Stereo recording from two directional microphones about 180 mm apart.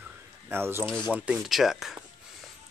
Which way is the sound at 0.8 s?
5° left (ahead or behind).